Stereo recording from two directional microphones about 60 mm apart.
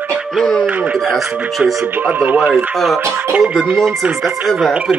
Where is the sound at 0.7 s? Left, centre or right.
Right.